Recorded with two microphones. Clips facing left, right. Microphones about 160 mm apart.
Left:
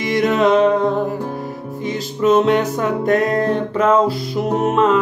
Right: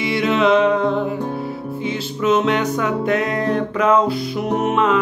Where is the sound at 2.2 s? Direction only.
40° left (ahead or behind).